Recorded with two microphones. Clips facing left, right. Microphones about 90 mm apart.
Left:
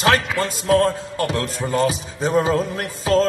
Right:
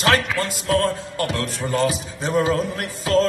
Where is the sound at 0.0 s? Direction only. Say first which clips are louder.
Left 1 dB; 20° left (ahead or behind).